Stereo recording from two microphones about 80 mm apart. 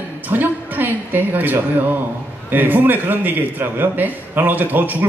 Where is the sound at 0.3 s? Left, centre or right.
Right.